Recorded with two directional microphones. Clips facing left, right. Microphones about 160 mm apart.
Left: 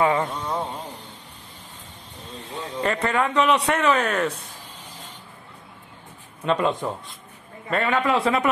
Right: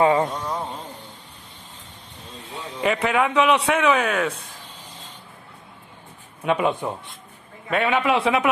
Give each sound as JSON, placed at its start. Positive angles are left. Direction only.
{"t": 0.0, "sound": "speech", "side_deg": -25}
{"t": 2.6, "sound": "a man's voice", "side_deg": -10}
{"t": 6.4, "sound": "a man's voice", "side_deg": -10}